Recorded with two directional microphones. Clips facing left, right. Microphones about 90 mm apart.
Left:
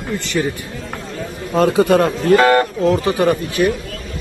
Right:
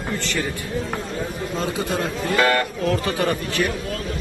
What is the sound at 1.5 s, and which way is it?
Speech, 90° left.